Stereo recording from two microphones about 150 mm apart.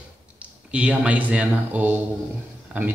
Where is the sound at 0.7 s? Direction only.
10° right (ahead or behind).